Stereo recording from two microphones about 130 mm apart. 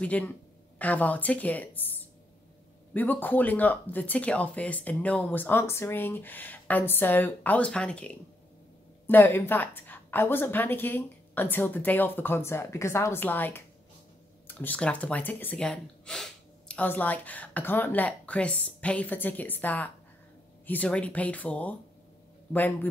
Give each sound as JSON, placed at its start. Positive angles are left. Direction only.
{"t": 0.0, "sound": "speech", "side_deg": 10}